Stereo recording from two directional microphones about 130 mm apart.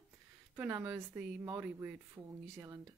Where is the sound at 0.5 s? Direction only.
20° right (ahead or behind).